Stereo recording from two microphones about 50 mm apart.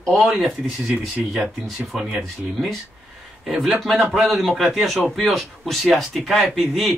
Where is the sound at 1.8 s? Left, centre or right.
Right.